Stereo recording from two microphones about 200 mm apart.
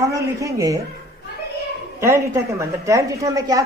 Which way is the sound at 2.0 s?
15° right (ahead or behind).